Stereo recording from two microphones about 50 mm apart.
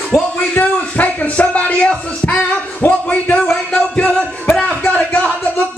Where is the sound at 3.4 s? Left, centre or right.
Centre.